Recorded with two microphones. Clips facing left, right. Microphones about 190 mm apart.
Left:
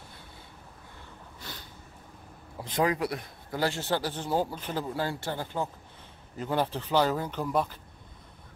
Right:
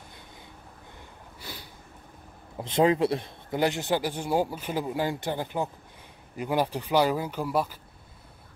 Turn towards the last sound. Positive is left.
turn(degrees=-5)  # may be behind; listen again after turning